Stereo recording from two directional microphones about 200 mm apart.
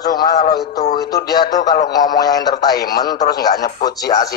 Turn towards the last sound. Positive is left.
turn(degrees=20)  # may be behind; listen again after turning